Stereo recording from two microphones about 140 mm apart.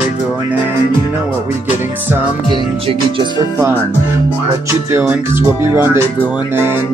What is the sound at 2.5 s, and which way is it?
Music, 35° right (ahead or behind).